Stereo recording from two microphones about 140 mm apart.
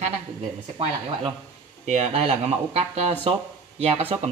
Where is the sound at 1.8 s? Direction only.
55° right (ahead or behind).